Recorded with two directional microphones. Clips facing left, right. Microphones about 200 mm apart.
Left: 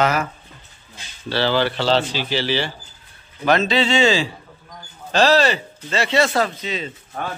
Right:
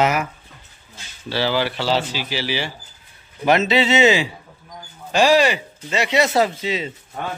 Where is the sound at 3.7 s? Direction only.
20° right (ahead or behind).